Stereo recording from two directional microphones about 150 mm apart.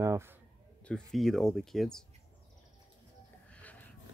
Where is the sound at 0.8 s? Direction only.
5° left (ahead or behind).